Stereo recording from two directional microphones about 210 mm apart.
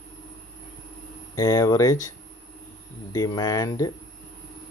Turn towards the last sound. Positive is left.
turn(degrees=15)  # may be behind; listen again after turning